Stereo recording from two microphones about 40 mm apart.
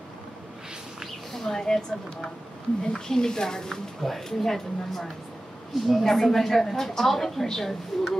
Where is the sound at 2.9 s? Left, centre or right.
Centre.